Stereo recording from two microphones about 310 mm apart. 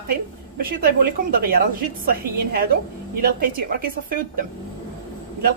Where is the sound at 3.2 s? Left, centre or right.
Right.